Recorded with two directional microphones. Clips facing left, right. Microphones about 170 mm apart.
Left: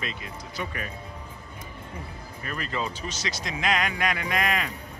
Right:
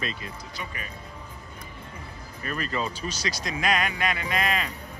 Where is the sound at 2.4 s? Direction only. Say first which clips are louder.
Right 2 dB; 20° left (ahead or behind).